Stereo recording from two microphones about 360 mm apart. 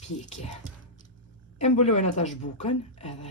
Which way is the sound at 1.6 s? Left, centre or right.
Centre.